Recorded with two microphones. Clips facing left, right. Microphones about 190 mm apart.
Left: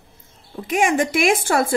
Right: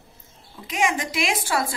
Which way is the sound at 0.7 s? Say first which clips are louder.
Left 6 dB; 50° left (ahead or behind).